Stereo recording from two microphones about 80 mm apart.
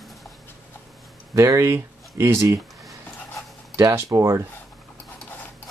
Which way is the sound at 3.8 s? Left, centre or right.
Right.